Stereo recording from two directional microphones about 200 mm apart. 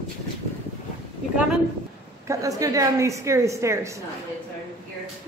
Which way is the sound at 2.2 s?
15° right (ahead or behind).